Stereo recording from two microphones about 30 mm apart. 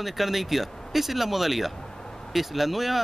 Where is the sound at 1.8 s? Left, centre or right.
Left.